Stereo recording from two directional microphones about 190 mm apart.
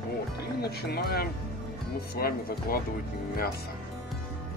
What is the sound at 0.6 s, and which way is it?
Speech, 55° left (ahead or behind).